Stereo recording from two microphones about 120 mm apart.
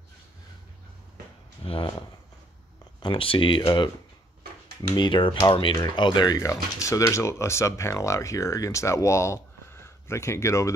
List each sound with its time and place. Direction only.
1.6 s a sound: 50° left (ahead or behind)
3.0 s speech: 45° left (ahead or behind)
4.9 s speech: 40° left (ahead or behind); by 10.7 s 25° left (ahead or behind)